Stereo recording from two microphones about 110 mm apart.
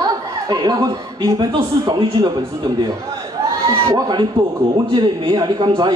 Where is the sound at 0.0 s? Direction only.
35° right (ahead or behind).